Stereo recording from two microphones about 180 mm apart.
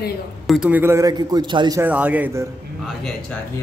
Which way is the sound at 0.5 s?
5° right (ahead or behind).